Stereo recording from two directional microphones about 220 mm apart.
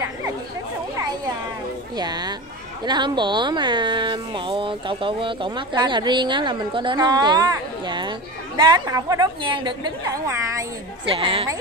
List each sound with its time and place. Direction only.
2.0 s speech: 20° right (ahead or behind)